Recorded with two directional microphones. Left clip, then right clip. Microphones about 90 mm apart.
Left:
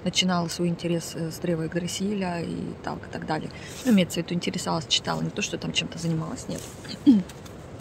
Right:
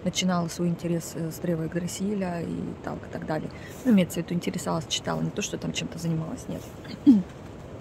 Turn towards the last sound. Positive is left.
turn(degrees=-35)  # may be behind; listen again after turning